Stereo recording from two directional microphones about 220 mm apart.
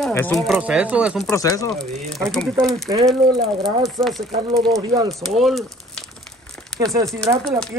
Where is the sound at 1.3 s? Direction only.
15° left (ahead or behind).